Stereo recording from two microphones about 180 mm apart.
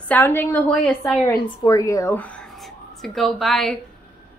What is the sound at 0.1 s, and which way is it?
Speech, 10° left (ahead or behind).